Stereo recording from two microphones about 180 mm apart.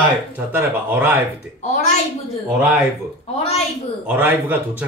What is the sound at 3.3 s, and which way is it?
Child singing, 35° left (ahead or behind).